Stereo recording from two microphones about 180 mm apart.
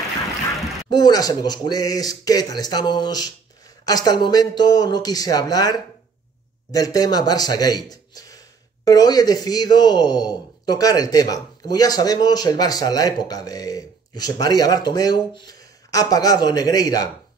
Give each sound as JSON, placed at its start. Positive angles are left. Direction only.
{"t": 0.8, "sound": "a man's voice", "side_deg": 25}